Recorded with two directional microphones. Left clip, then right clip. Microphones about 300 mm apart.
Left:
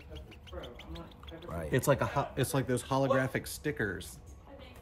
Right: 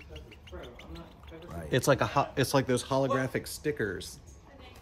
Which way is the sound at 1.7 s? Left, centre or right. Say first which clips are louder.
Right 3 dB; centre.